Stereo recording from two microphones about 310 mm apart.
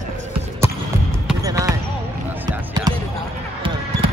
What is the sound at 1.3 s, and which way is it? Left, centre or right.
Basketball bounce, centre.